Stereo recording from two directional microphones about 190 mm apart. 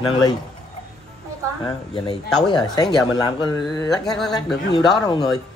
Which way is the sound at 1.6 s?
25° left (ahead or behind).